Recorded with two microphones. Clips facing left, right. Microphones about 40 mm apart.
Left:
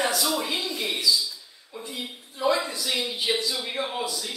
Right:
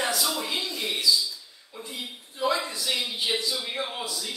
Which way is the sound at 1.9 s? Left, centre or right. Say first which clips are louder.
Right 1 dB; centre.